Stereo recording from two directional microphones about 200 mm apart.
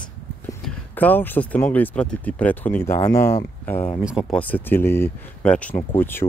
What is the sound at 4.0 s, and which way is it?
Speech, 5° right (ahead or behind).